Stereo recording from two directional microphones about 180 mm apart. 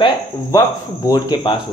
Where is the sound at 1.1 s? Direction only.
25° left (ahead or behind).